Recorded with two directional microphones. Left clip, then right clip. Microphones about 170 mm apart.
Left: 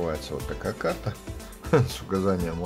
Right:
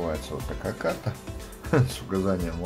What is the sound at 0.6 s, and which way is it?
Speech, 20° left (ahead or behind).